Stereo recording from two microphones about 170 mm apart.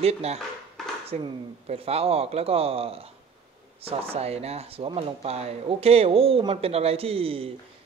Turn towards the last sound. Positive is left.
turn(degrees=-35)  # may be behind; listen again after turning